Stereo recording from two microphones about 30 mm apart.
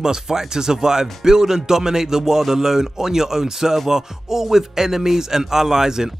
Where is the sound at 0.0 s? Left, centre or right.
Centre.